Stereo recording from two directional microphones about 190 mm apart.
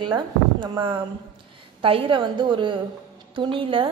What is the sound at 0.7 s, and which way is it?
A woman's voice, 25° right (ahead or behind).